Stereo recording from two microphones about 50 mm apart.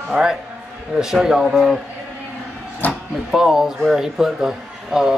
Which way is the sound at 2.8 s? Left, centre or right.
Left.